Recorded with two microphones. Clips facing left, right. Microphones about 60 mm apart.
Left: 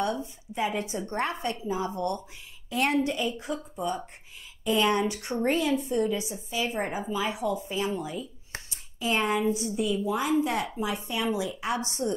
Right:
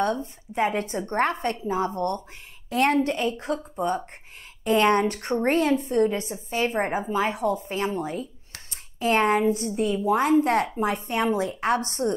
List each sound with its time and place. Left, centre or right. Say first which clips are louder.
0.6 s a woman's voice: right 5 dB; right
8.6 s a sound: right 6 dB; right
9.4 s a woman's voice: right 4 dB; right